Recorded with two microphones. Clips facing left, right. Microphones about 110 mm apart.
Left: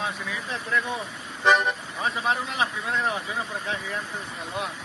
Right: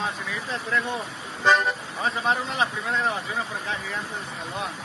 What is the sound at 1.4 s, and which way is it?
Speech, 5° left (ahead or behind).